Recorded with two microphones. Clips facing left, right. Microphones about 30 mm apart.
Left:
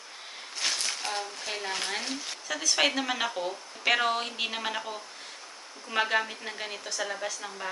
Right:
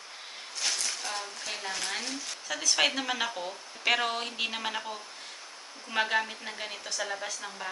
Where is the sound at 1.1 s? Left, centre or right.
Centre.